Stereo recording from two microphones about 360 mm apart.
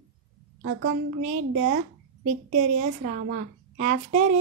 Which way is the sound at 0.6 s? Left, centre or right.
Right.